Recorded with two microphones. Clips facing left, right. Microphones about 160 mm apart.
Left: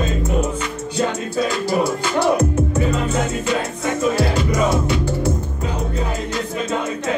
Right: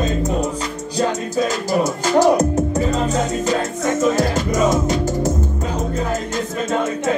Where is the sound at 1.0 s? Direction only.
40° right (ahead or behind).